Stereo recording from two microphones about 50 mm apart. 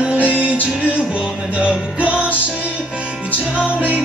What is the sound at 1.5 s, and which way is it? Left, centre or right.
Music, right.